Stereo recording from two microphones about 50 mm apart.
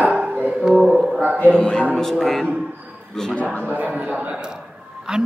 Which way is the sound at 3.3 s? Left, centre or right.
Left.